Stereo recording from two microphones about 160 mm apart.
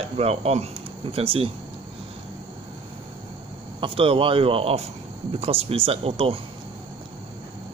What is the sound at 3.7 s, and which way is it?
Speech, 35° right (ahead or behind).